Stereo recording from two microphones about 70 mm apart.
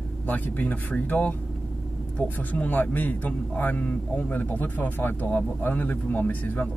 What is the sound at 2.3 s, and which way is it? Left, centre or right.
A man's voice, left.